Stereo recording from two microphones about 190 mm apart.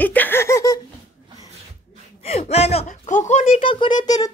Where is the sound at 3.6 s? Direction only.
25° left (ahead or behind).